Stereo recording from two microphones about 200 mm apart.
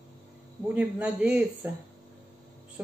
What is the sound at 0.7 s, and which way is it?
Speech, 5° right (ahead or behind).